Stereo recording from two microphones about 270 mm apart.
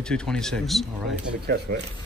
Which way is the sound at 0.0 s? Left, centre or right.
Centre.